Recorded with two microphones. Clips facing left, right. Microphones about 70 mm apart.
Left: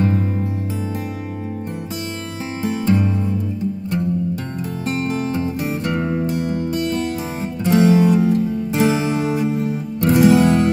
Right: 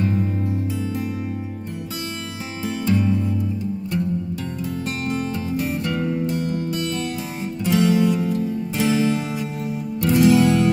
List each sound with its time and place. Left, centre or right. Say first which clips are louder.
2.6 s music: left 2 dB; left
4.8 s music: left 5 dB; left